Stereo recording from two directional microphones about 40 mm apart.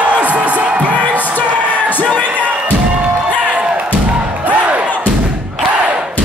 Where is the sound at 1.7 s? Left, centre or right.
Left.